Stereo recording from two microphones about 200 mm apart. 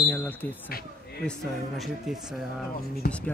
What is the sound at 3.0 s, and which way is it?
Speech, 50° left (ahead or behind).